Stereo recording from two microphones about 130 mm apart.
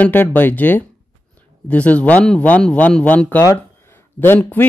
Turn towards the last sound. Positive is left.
turn(degrees=15)  # may be behind; listen again after turning